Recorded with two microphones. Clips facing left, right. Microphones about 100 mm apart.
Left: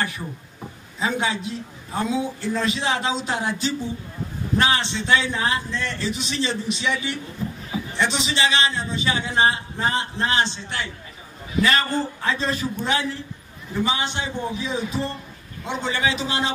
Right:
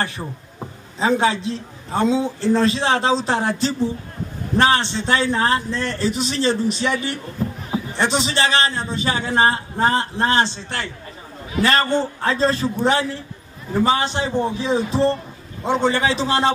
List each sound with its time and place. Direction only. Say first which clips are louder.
0.9 s a man's voice: right 6 dB; 30° right (ahead or behind)
4.6 s a man's voice: right 5 dB; 40° right (ahead or behind)